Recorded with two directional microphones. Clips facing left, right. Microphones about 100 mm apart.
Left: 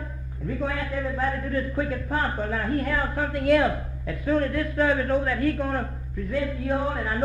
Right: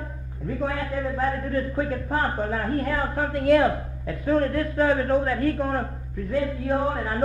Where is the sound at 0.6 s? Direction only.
35° right (ahead or behind).